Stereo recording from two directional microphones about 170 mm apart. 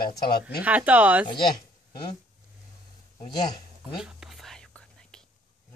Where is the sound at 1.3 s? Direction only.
25° left (ahead or behind).